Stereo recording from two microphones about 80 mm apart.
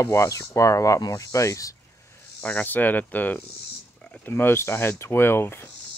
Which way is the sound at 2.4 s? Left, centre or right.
Left.